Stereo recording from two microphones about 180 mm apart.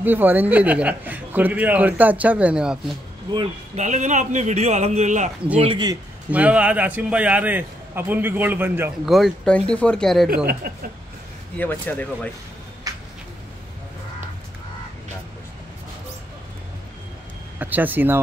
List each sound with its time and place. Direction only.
0.0 s a man's voice: 10° right (ahead or behind)
3.7 s a man's voice: 40° right (ahead or behind)
5.6 s a man's voice: 25° right (ahead or behind)
6.3 s a man's voice: 10° right (ahead or behind)
9.0 s speech: centre (ahead or behind)
10.4 s speech: 55° right (ahead or behind)
11.5 s speech: 10° left (ahead or behind)
12.9 s a sound: 20° right (ahead or behind)
17.6 s a man's voice: 10° right (ahead or behind)